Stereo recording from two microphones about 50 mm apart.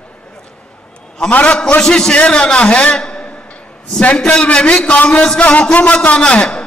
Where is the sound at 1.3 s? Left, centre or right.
Left.